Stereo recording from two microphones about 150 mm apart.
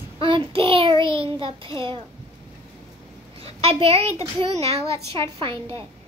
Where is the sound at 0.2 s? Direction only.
35° right (ahead or behind).